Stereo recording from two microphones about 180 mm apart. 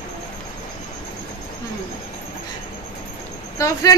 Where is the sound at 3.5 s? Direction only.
15° left (ahead or behind).